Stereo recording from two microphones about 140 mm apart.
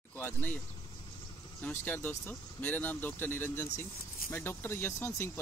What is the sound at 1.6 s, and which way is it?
Speech, 15° left (ahead or behind).